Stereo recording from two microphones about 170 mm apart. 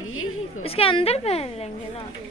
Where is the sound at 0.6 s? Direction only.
35° left (ahead or behind).